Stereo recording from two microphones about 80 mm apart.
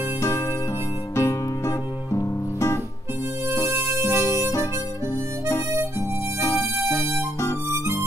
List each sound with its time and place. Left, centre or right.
1.1 s music: left
3.7 s music: right
5.7 s harmonica: right
7.7 s music: right